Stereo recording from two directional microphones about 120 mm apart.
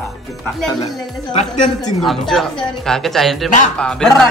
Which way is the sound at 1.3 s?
75° left (ahead or behind).